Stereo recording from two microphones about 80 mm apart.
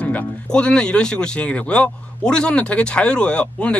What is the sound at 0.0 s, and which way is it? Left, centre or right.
Speech, centre.